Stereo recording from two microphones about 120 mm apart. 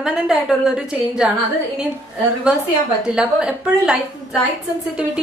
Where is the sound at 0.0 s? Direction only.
5° right (ahead or behind).